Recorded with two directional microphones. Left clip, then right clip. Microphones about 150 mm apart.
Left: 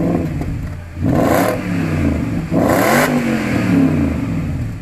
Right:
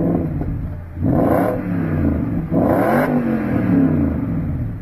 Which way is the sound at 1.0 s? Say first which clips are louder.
Left 2 dB; 25° left (ahead or behind).